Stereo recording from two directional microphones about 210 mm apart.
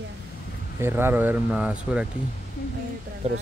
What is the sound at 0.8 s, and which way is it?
Speech, 10° right (ahead or behind).